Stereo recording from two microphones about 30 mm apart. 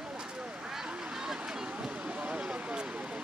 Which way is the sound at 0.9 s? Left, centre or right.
Right.